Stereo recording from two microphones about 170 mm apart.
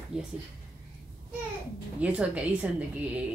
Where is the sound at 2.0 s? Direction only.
5° right (ahead or behind).